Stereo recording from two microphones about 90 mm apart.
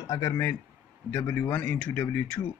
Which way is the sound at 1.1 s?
20° left (ahead or behind).